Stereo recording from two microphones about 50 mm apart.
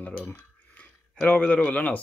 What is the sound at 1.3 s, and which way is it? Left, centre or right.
Speech, left.